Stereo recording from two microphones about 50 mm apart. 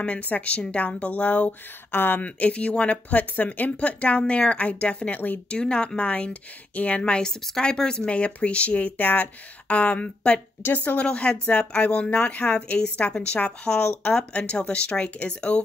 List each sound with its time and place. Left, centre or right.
0.0 s speech: left
1.9 s speech: left
2.2 s speech: left
3.1 s speech: left
5.6 s speech: centre
7.0 s a woman's voice: centre